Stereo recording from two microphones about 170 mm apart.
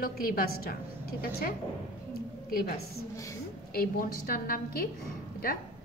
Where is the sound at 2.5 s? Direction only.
60° left (ahead or behind).